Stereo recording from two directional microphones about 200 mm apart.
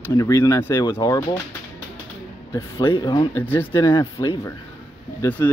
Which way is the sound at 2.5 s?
20° left (ahead or behind).